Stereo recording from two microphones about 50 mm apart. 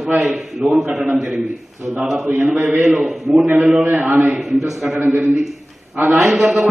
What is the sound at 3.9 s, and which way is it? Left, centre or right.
Speech, right.